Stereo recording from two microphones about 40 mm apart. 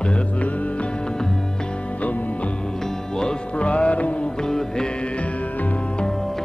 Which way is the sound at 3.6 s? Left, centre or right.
Left.